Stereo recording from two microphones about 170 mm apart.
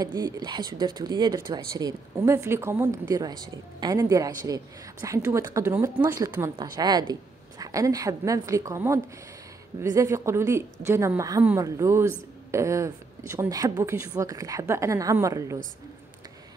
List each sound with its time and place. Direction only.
0.0 s a woman's voice: 25° right (ahead or behind)